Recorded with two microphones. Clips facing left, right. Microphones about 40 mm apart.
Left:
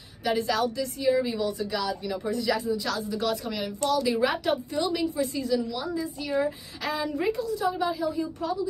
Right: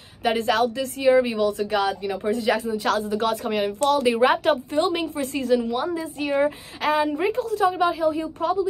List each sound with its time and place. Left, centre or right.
0.2 s speech: right
7.4 s speech: right